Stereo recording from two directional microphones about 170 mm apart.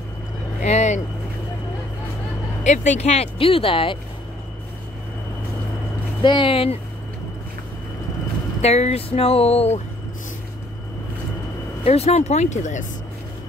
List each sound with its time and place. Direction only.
0.6 s vehicle: 45° left (ahead or behind)
2.6 s speech: 45° left (ahead or behind)
6.2 s speech: 30° left (ahead or behind)
8.5 s speech: 40° left (ahead or behind)
11.8 s speech: 35° left (ahead or behind)